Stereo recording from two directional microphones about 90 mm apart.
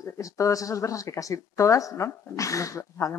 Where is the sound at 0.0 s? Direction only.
40° left (ahead or behind).